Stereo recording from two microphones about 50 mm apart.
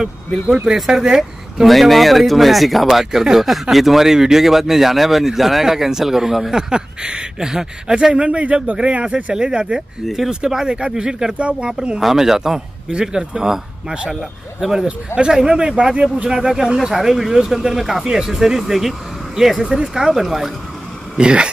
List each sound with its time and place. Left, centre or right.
0.0 s speech: centre
10.0 s speech: centre
12.0 s speech: centre
19.6 s speech: centre
21.2 s speech: centre